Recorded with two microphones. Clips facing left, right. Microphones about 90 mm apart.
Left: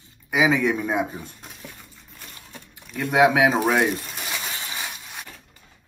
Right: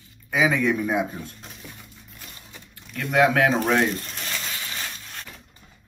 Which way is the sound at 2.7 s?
15° left (ahead or behind).